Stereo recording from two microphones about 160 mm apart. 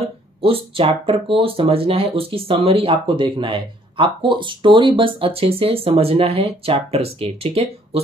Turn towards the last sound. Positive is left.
turn(degrees=-40)  # may be behind; listen again after turning